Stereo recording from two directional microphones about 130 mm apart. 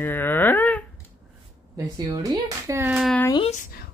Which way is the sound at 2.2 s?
25° right (ahead or behind).